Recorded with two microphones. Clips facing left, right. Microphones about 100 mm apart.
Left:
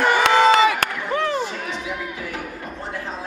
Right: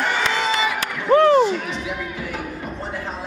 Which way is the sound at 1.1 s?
45° right (ahead or behind).